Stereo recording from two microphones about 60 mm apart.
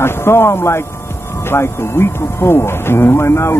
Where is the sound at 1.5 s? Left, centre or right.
Left.